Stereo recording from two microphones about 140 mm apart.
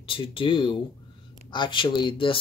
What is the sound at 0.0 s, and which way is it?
Speech, 40° left (ahead or behind).